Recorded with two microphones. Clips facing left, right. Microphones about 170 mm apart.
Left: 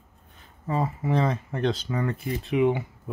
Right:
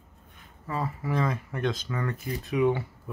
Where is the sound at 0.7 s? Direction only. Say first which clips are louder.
Left 4 dB; 25° left (ahead or behind).